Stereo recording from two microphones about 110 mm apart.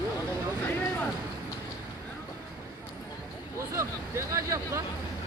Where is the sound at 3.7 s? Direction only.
25° right (ahead or behind).